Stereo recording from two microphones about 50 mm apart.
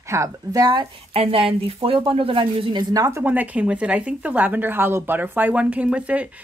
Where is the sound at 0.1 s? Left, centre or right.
Right.